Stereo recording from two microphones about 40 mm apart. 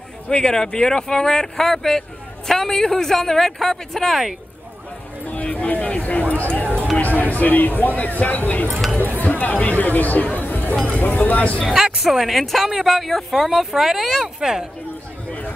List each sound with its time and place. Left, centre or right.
0.3 s speech: centre
5.2 s a sound: left
5.9 s speech: left
10.3 s chatter: left
11.0 s speech: left
11.7 s a woman's voice: centre